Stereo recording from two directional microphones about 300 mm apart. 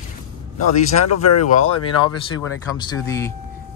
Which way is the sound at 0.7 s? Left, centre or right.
Left.